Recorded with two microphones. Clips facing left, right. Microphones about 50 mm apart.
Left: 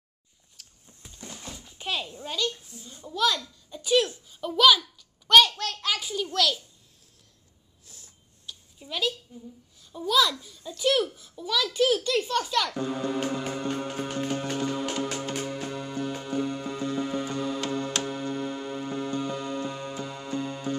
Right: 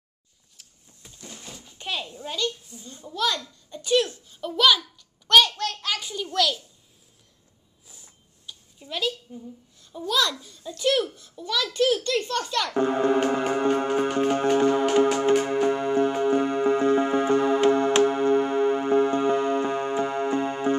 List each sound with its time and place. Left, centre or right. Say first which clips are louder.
1.3 s a child's voice: left 1 dB; centre
7.8 s a sound: right 1 dB; centre
9.8 s a child's voice: left 1 dB; centre
12.7 s music: right 8 dB; right